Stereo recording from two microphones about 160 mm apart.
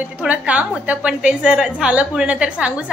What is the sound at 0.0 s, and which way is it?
A woman's voice, 10° right (ahead or behind).